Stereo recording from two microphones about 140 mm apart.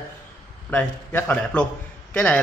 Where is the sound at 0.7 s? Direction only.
10° left (ahead or behind).